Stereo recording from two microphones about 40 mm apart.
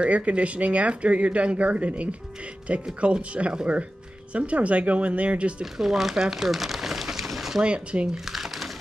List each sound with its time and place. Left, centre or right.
0.0 s speech: right
5.6 s speech: centre
7.6 s speech: right
8.1 s crumpling: centre